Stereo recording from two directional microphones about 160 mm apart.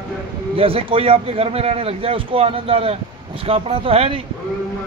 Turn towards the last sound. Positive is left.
turn(degrees=-35)  # may be behind; listen again after turning